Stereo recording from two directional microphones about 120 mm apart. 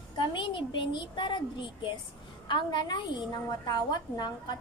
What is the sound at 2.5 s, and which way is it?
A child's voice, 40° left (ahead or behind).